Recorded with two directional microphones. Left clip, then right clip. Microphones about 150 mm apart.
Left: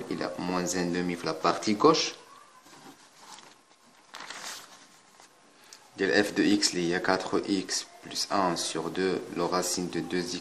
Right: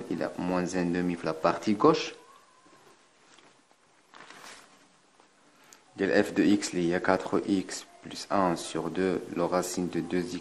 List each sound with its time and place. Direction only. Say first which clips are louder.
0.1 s speech: right 1 dB; 30° right (ahead or behind)
5.9 s speech: even; 30° right (ahead or behind)